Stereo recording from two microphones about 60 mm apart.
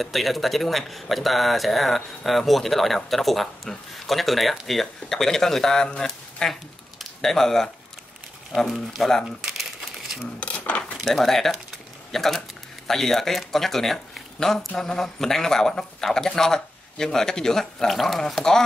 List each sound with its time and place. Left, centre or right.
0.0 s speech: centre
8.9 s speech: centre
10.4 s dishes: left
11.1 s speech: centre